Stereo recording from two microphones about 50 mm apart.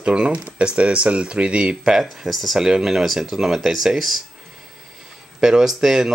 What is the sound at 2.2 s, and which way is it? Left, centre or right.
Speech, centre.